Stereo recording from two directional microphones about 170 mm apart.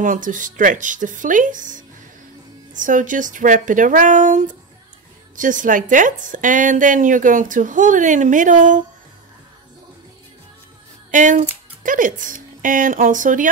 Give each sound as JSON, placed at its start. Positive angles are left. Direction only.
{"t": 0.0, "sound": "a woman's voice", "side_deg": -50}
{"t": 11.1, "sound": "speech", "side_deg": -50}